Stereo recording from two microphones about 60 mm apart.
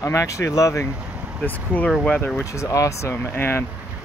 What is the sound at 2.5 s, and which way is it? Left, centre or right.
Speech, left.